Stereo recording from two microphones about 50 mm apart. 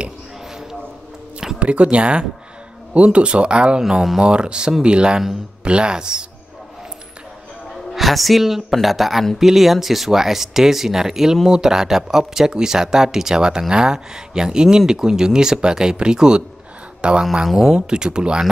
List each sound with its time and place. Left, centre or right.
1.6 s speech: right
3.8 s speech: centre
4.2 s speech: centre
7.9 s speech: centre
17.5 s speech: centre
17.7 s speech: centre